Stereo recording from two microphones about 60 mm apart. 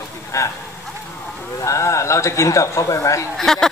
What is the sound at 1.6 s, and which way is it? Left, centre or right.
Speech, left.